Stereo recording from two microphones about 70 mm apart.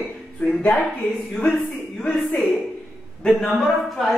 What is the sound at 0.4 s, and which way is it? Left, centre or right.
Speech, centre.